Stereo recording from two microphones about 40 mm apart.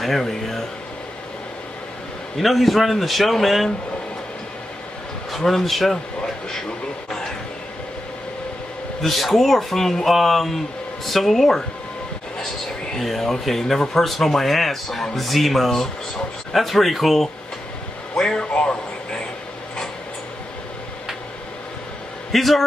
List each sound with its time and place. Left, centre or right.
0.0 s speech: centre
2.3 s speech: centre
5.3 s speech: centre
9.0 s speech: centre
18.1 s a man's voice: centre
18.5 s a sound: left
22.3 s speech: centre